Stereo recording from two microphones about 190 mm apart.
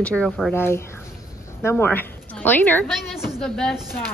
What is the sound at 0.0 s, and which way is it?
A woman's voice, 5° left (ahead or behind).